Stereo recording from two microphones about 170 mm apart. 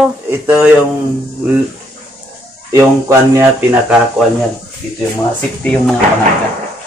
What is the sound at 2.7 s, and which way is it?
Speech, 15° right (ahead or behind).